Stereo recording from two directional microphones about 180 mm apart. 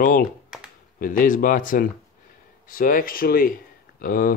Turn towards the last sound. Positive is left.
turn(degrees=55)  # may be behind; listen again after turning